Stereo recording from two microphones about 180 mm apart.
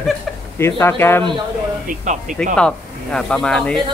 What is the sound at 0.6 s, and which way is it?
Speech, 15° left (ahead or behind).